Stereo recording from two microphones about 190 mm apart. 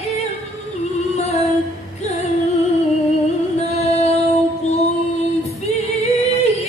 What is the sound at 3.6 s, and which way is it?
Female singing, 35° left (ahead or behind).